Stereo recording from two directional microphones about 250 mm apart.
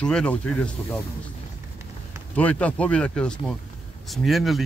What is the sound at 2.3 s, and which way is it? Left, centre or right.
A man's voice, centre.